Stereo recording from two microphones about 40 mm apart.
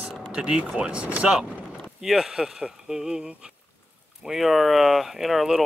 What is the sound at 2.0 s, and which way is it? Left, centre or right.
Speech, centre.